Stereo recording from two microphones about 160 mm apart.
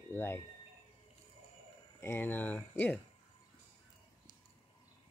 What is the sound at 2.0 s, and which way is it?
Speech, 15° left (ahead or behind).